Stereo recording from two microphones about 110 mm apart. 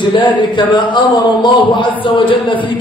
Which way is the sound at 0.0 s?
45° left (ahead or behind).